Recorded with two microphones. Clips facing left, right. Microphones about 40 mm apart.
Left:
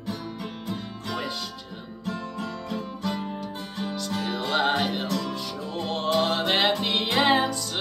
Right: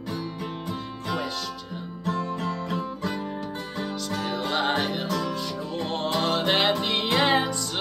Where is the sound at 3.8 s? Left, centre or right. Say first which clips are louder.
Left 1 dB; centre.